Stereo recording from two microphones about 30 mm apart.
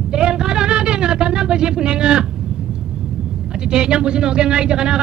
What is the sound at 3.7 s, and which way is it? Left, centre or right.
Speech, right.